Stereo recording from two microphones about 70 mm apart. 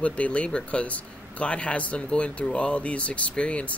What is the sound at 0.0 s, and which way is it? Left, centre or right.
A man's voice, centre.